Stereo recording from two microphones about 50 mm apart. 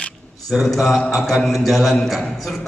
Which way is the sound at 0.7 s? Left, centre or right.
Centre.